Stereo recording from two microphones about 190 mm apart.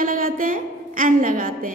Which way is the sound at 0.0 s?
45° right (ahead or behind).